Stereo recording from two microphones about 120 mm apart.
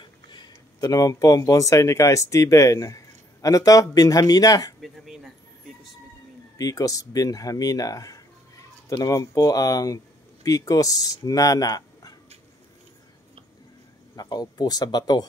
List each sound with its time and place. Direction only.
0.0 s speech: 40° left (ahead or behind)
4.8 s a sound: centre (ahead or behind)
6.6 s speech: 30° left (ahead or behind)
14.1 s speech: 35° left (ahead or behind)